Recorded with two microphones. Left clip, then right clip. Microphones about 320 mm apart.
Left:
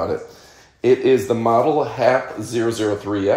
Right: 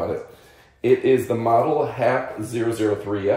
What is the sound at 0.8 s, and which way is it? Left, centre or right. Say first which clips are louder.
Speech: left 3 dB; left.